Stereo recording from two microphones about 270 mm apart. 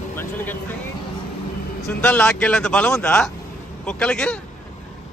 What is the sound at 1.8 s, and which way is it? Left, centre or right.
A man's voice, centre.